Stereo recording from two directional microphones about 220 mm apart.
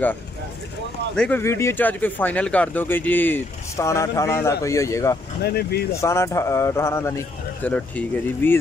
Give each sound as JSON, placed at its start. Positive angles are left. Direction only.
{"t": 1.1, "sound": "speech", "side_deg": 5}
{"t": 5.4, "sound": "speech", "side_deg": 45}
{"t": 5.9, "sound": "speech", "side_deg": 15}